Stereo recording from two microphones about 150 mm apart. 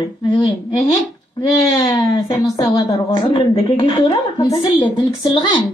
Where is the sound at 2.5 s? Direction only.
30° left (ahead or behind).